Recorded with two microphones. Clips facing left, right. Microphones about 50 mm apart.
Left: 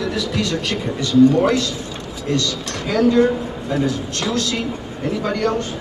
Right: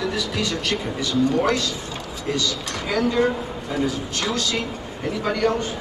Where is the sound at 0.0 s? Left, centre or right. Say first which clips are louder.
Left 3 dB; centre.